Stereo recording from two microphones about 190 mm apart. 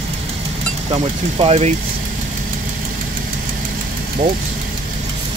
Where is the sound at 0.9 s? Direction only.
30° right (ahead or behind).